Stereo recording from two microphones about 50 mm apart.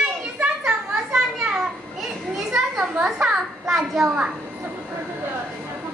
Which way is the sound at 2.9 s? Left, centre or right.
Right.